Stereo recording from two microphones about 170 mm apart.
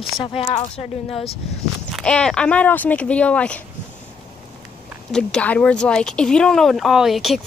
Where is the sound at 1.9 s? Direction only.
5° left (ahead or behind).